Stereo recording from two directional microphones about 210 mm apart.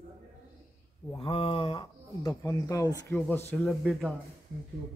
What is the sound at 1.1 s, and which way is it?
Speech, 25° left (ahead or behind).